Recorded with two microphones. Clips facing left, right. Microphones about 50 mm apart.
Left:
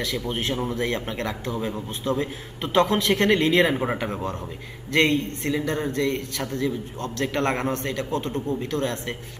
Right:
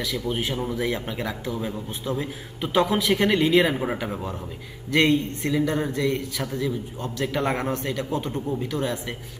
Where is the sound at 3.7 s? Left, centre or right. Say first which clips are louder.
Left 2 dB; centre.